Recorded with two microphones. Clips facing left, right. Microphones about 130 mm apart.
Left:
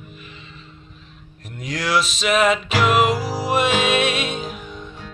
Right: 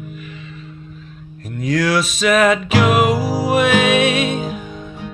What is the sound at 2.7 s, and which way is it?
Music, 15° right (ahead or behind).